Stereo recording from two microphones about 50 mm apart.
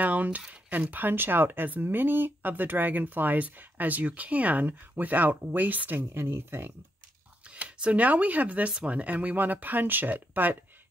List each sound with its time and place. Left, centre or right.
0.0 s a sound: right
0.5 s speech: right
7.4 s speech: right